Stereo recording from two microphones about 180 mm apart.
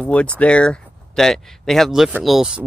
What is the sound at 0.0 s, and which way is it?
Speech, 5° left (ahead or behind).